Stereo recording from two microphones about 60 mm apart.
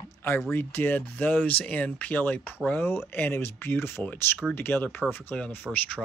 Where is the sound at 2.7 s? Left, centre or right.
Left.